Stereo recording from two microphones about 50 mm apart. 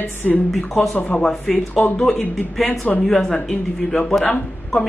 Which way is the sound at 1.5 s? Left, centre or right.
Left.